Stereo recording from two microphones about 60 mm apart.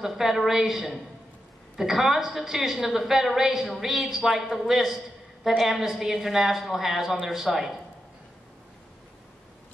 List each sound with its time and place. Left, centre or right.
0.0 s a woman's voice: centre